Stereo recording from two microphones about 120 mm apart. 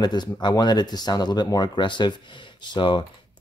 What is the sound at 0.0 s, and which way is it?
Speech, 35° left (ahead or behind).